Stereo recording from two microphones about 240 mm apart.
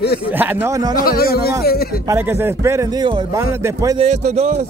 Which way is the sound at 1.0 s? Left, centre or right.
Left.